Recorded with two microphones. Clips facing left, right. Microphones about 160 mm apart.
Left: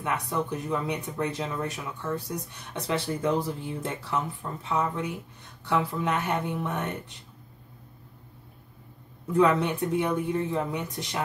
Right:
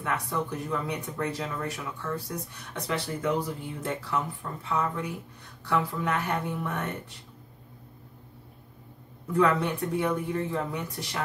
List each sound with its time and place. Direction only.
0.0 s speech: 20° left (ahead or behind)
9.4 s speech: 20° left (ahead or behind)